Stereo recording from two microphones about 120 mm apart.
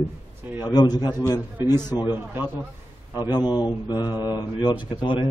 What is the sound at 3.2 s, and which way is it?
A man's voice, 35° left (ahead or behind).